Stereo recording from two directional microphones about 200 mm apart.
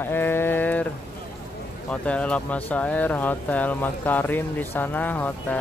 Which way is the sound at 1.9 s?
5° left (ahead or behind).